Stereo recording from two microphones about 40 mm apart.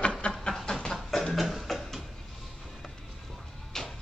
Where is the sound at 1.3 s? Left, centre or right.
Centre.